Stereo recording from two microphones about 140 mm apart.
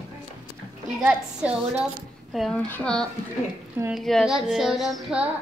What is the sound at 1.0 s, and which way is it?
Speech, 10° right (ahead or behind).